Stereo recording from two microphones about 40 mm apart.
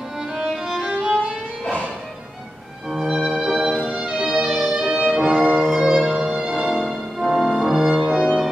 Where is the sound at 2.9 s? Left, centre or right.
Centre.